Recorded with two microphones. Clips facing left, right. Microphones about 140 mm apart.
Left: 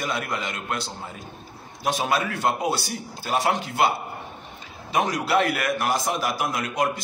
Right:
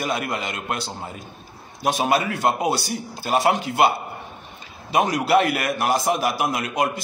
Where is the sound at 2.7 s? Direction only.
35° right (ahead or behind).